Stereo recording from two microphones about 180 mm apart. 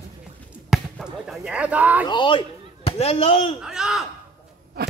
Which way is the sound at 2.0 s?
25° left (ahead or behind).